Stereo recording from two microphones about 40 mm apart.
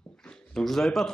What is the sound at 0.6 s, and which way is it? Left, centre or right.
Speech, centre.